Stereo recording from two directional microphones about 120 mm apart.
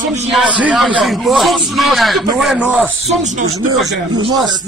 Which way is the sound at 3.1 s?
85° right.